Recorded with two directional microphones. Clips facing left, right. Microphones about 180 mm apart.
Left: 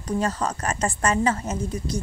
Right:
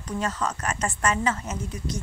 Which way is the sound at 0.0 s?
35° left (ahead or behind).